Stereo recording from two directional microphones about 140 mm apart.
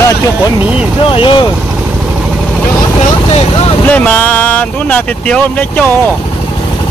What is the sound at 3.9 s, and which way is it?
Speech, 10° left (ahead or behind).